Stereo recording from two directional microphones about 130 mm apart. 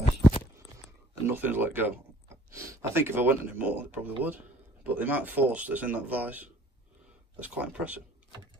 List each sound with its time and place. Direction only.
1.2 s speech: 15° right (ahead or behind)